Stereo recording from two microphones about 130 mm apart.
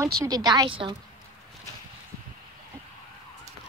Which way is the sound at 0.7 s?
40° right (ahead or behind).